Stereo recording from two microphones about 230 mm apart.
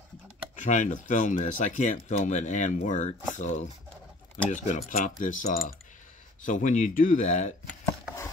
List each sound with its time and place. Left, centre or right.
0.6 s speech: left